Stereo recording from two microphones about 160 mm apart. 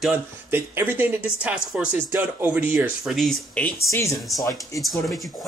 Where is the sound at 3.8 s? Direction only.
15° left (ahead or behind).